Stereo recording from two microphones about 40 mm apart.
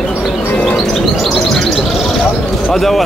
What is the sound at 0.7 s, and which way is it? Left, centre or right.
A man's voice, centre.